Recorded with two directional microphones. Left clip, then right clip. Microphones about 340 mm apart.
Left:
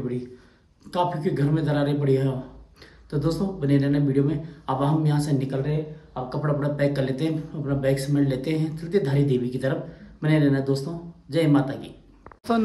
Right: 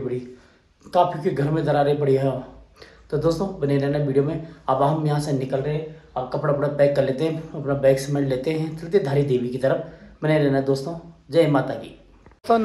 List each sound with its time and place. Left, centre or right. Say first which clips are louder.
0.8 s speech: right 5 dB; centre